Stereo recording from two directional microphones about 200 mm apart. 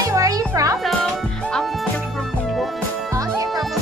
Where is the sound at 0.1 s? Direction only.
15° right (ahead or behind).